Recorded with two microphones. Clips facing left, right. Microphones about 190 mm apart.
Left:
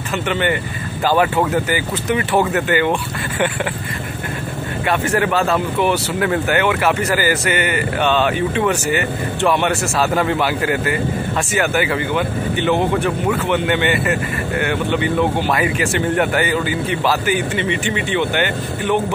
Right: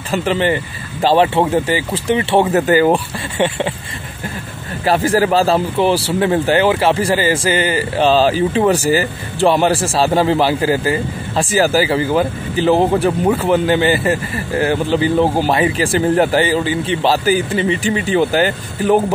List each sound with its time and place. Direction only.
0.1 s a man's voice: 35° right (ahead or behind)
4.8 s a man's voice: 35° right (ahead or behind)